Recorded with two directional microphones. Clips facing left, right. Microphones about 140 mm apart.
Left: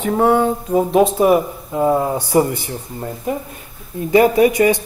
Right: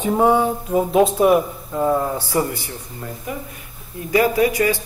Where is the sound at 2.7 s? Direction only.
35° left (ahead or behind).